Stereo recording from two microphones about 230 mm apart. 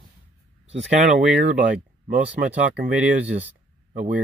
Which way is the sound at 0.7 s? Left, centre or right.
Right.